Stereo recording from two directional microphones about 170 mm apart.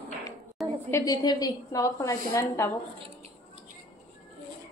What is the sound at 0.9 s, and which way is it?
A woman's voice, 20° left (ahead or behind).